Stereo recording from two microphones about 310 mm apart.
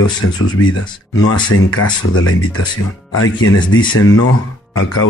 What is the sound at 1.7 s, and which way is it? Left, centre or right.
Speech, left.